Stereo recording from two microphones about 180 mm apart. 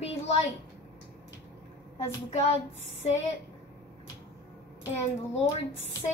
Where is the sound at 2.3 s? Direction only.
40° left (ahead or behind).